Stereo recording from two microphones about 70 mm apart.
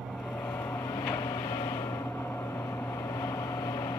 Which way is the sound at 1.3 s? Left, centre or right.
Left.